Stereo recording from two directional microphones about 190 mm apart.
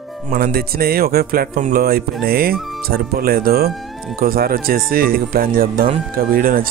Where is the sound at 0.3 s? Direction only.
50° right (ahead or behind).